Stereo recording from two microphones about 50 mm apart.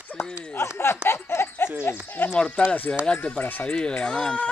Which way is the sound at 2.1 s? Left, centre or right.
Left.